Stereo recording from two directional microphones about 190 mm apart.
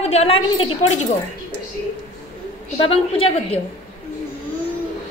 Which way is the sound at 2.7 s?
30° left (ahead or behind).